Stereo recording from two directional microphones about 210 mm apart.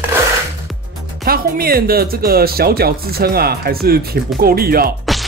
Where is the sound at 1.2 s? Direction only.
45° right (ahead or behind).